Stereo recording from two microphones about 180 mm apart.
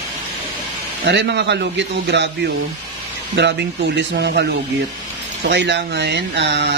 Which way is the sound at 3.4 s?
80° right.